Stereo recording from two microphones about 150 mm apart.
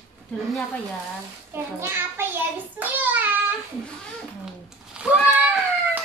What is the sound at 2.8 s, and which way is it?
Child singing, 10° right (ahead or behind).